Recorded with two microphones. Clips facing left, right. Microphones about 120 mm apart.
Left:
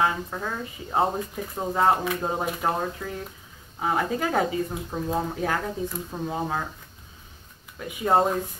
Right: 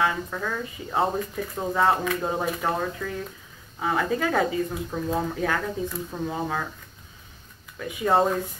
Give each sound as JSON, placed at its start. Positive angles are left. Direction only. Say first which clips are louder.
{"t": 0.0, "sound": "speech", "louder": "even", "side_deg": 20}
{"t": 7.8, "sound": "speech", "louder": "even", "side_deg": 20}